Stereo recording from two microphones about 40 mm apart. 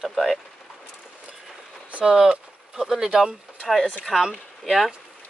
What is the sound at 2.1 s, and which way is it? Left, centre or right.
Speech, centre.